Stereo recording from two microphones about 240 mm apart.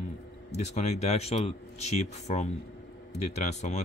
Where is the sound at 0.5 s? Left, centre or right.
Left.